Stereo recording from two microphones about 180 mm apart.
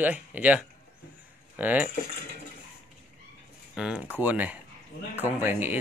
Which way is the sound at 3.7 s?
5° right (ahead or behind).